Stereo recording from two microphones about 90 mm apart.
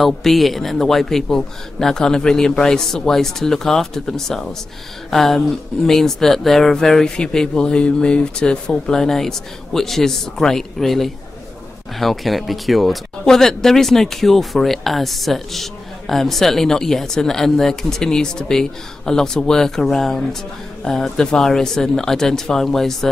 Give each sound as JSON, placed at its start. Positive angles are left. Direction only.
{"t": 0.0, "sound": "speech", "side_deg": 0}